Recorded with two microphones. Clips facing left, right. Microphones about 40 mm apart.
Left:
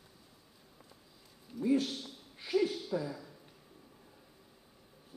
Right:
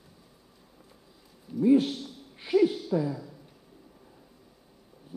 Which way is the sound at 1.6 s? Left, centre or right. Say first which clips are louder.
Right 9 dB; right.